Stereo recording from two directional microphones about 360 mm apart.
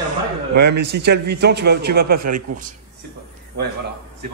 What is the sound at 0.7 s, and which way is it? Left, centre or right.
A man's voice, right.